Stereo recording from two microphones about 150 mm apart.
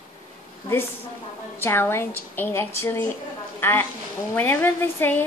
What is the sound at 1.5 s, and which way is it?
A woman's voice, 15° left (ahead or behind).